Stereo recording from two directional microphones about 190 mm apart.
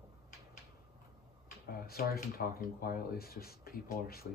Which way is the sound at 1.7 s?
50° left (ahead or behind).